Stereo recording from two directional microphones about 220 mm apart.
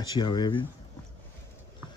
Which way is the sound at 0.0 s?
20° left (ahead or behind).